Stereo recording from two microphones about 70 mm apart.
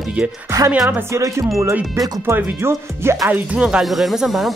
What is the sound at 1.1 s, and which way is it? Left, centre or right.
Speech, right.